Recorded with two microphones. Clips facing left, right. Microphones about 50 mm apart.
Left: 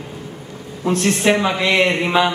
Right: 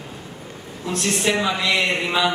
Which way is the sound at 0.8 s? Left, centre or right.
Left.